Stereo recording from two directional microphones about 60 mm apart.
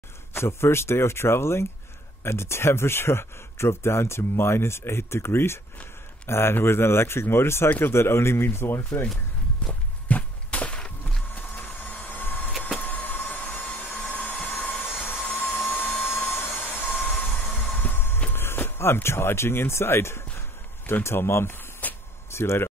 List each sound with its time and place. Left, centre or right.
0.3 s speech: left
9.6 s walk: left
10.0 s a sound: left
11.3 s vehicle: left
12.8 s hair dryer: left
15.2 s dental drill: left
16.0 s a sound: left
16.6 s vehicle: left
17.7 s train: left
18.3 s speech: left
20.3 s a sound: left